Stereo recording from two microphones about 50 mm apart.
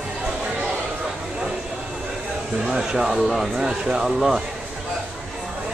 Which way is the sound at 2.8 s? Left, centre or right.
Centre.